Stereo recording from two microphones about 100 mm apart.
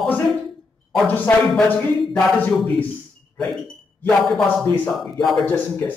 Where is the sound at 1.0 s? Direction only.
15° left (ahead or behind).